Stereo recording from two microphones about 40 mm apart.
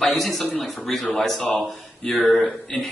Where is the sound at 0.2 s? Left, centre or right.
Centre.